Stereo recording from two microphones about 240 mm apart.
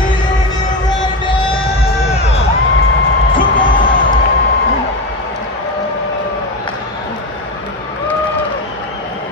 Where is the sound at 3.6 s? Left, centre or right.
Left.